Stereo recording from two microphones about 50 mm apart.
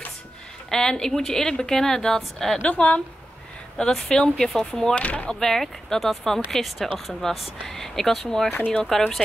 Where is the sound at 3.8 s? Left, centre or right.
Centre.